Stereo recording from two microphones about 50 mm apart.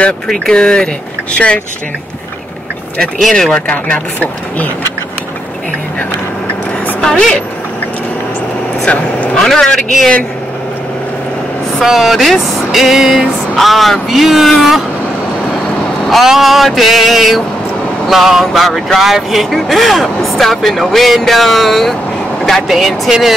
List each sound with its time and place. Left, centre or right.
0.3 s speech: centre
3.2 s speech: centre
3.4 s speech: centre
3.7 s speech: left
7.1 s speech: centre
8.8 s speech: left
9.4 s speech: centre
11.8 s speech: centre
16.1 s speech: centre